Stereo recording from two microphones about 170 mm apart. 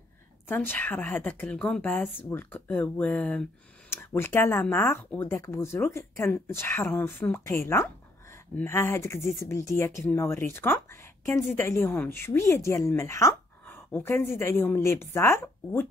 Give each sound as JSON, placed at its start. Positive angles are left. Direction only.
{"t": 0.5, "sound": "speech", "side_deg": 10}